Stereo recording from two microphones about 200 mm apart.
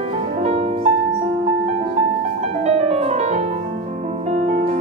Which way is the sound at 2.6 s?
35° right (ahead or behind).